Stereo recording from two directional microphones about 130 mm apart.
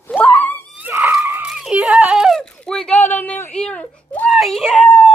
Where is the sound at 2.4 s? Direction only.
5° left (ahead or behind).